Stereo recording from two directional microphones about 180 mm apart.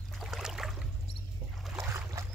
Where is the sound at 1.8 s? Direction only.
15° right (ahead or behind).